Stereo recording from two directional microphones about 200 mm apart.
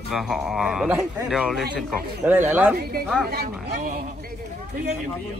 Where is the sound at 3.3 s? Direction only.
55° right (ahead or behind).